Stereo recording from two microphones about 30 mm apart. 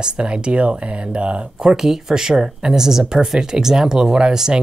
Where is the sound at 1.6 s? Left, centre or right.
Right.